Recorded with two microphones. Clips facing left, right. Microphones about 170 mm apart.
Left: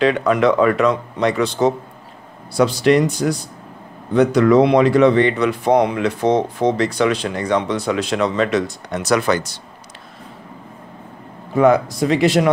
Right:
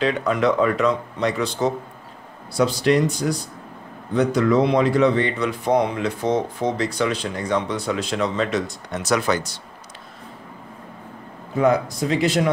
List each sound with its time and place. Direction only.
0.0 s speech: 75° left (ahead or behind)
11.5 s speech: 70° left (ahead or behind)